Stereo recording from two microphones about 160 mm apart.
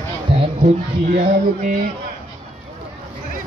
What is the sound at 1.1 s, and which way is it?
Music, 55° right (ahead or behind).